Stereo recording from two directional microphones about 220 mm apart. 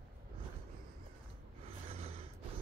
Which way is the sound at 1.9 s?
25° right (ahead or behind).